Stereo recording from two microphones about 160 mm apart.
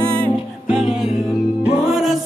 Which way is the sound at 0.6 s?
5° right (ahead or behind).